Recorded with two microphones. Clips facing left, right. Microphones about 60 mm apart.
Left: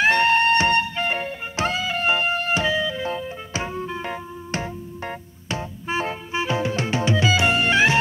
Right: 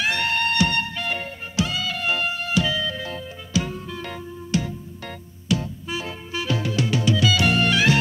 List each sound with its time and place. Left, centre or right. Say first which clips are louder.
0.0 s music: left 6 dB; left